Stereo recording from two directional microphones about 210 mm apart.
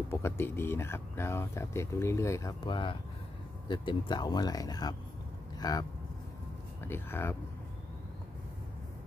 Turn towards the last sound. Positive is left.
turn(degrees=10)  # may be behind; listen again after turning